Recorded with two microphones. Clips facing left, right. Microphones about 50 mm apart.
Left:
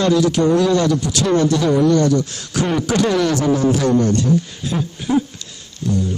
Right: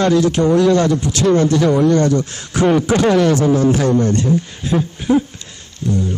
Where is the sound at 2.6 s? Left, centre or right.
Right.